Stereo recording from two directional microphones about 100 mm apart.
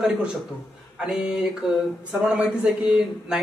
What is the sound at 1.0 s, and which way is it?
Speech, 5° right (ahead or behind).